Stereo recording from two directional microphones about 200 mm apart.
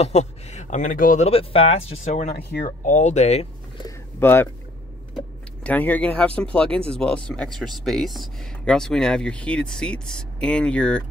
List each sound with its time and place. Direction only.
0.0 s speech: 35° left (ahead or behind)
3.8 s a sound: 10° left (ahead or behind)
5.1 s speech: 5° left (ahead or behind)